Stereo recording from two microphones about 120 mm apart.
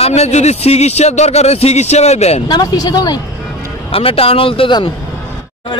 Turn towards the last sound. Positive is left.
turn(degrees=45)  # may be behind; listen again after turning